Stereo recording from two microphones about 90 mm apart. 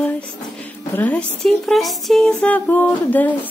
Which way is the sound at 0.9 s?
15° left (ahead or behind).